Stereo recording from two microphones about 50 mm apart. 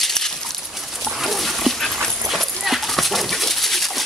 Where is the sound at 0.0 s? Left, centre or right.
Centre.